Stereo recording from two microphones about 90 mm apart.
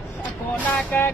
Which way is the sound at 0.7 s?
15° left (ahead or behind).